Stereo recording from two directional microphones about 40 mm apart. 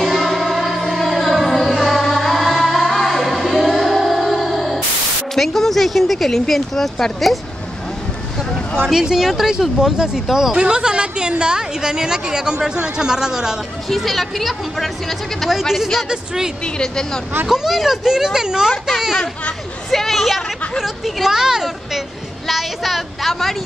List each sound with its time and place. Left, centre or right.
0.0 s music: centre
5.3 s speech: centre
9.1 s speech: centre
10.6 s a woman's voice: right
13.8 s speech: centre
16.1 s speech: centre
16.6 s speech: centre
17.5 s speech: centre
19.9 s a woman's voice: centre